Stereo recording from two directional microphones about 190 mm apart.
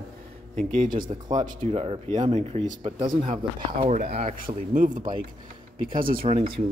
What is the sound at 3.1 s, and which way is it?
Speech, 40° right (ahead or behind).